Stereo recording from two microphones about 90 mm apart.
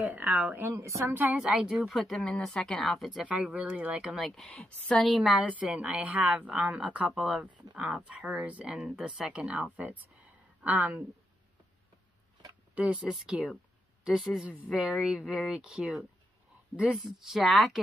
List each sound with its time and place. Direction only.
0.0 s speech: 20° right (ahead or behind)
0.7 s a woman's voice: 30° right (ahead or behind)
1.4 s a woman's voice: 5° right (ahead or behind)
3.3 s a woman's voice: 15° right (ahead or behind); by 5.0 s 10° left (ahead or behind)
5.0 s a woman's voice: centre (ahead or behind)
5.3 s speech: 15° right (ahead or behind)
7.1 s a woman's voice: centre (ahead or behind); by 11.0 s 20° right (ahead or behind)
12.7 s a woman's voice: 15° right (ahead or behind)